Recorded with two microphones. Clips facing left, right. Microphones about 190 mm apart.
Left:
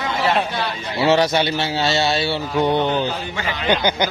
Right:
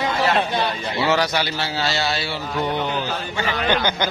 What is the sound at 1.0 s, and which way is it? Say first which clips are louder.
A man's voice: left 5 dB; 25° left (ahead or behind).